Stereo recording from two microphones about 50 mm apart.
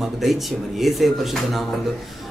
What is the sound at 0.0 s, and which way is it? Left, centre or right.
A man's voice, centre.